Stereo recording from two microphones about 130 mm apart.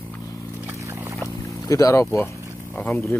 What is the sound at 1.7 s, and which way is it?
Speech, 25° left (ahead or behind).